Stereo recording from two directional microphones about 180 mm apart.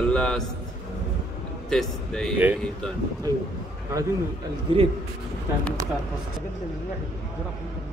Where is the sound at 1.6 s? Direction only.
Centre (ahead or behind).